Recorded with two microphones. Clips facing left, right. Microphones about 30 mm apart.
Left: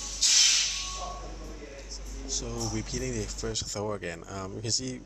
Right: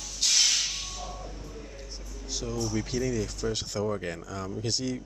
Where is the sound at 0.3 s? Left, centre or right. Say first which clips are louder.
Left 1 dB; centre.